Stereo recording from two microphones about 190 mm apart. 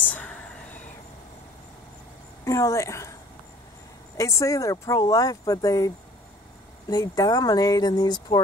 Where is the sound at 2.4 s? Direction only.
15° left (ahead or behind).